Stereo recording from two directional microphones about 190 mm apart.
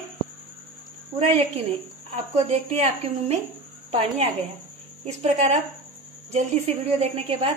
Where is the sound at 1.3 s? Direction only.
30° right (ahead or behind).